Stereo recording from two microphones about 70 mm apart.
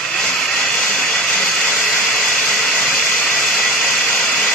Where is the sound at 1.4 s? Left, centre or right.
Left.